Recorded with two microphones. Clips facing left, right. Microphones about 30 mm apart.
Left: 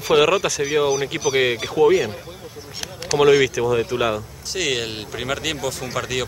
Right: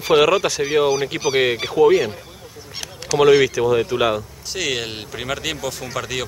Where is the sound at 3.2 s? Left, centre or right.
Centre.